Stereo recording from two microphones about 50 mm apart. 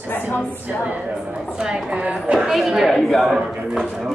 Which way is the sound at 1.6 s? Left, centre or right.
Centre.